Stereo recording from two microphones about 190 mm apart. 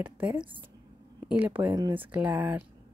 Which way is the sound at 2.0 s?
10° right (ahead or behind).